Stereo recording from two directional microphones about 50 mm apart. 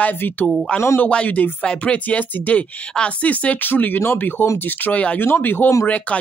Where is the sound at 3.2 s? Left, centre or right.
Left.